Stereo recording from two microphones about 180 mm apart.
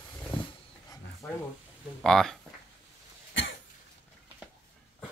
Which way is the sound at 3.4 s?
90° left.